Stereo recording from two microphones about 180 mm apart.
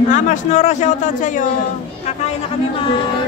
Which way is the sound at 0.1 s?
40° left (ahead or behind).